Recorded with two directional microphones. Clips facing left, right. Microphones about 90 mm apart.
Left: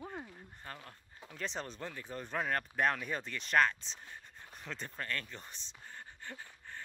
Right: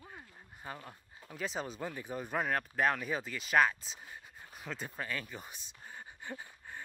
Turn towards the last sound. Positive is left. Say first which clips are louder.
# right 2 dB
turn(degrees=-10)  # may be behind; listen again after turning